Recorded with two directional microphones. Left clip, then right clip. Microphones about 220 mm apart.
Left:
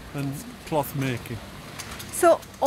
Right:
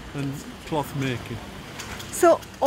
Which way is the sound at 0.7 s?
30° left (ahead or behind).